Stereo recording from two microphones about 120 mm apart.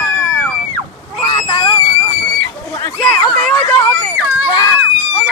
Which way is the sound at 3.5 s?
25° left (ahead or behind).